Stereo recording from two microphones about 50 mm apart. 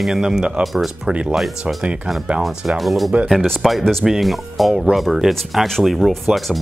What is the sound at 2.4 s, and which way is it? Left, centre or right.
Speech, centre.